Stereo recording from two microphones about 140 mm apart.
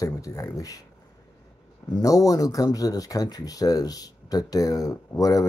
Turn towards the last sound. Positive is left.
turn(degrees=25)  # may be behind; listen again after turning